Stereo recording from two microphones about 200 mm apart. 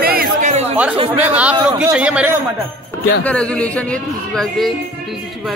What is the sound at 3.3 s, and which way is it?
Speech, 5° left (ahead or behind).